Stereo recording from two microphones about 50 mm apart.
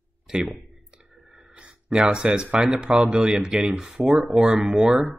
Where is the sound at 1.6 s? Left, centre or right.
Centre.